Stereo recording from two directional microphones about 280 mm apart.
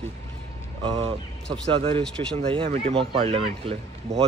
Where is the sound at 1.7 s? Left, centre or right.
Centre.